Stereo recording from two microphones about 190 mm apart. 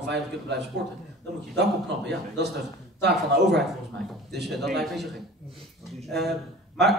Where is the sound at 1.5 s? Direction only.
65° right (ahead or behind).